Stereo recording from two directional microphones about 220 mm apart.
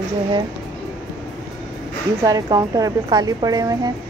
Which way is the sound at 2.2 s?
15° right (ahead or behind).